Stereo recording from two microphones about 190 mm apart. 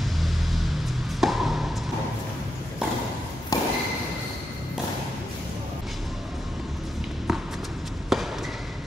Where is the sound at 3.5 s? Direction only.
20° left (ahead or behind).